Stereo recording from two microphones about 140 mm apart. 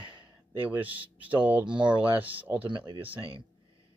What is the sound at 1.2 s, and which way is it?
Speech, 10° right (ahead or behind).